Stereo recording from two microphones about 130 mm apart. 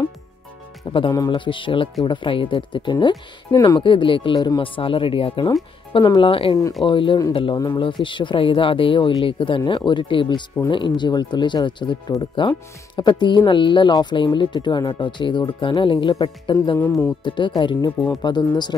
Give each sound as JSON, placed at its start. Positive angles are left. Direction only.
{"t": 0.8, "sound": "speech", "side_deg": 40}
{"t": 3.8, "sound": "speech", "side_deg": 40}
{"t": 16.7, "sound": "speech", "side_deg": 20}
{"t": 17.2, "sound": "speech", "side_deg": 35}